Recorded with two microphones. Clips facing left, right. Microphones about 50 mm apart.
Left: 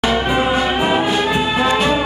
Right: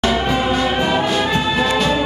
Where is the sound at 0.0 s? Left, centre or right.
Centre.